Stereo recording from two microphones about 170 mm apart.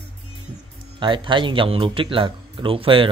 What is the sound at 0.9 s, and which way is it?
Speech, 30° right (ahead or behind).